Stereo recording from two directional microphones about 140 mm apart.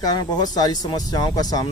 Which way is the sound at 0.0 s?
30° left (ahead or behind).